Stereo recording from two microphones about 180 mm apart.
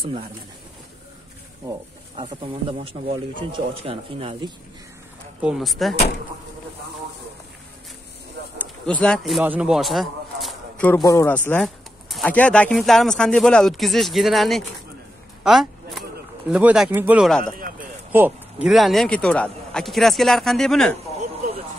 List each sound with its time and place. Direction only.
0.0 s speech: 30° right (ahead or behind)
2.1 s speech: 30° right (ahead or behind)
5.4 s a man's voice: centre (ahead or behind)
8.5 s speech: 5° left (ahead or behind)
9.4 s a man's voice: 10° right (ahead or behind)
15.4 s bird: 5° right (ahead or behind)
17.3 s a man's voice: 5° left (ahead or behind)
17.6 s a sound: 50° right (ahead or behind)
18.1 s a man's voice: 10° right (ahead or behind)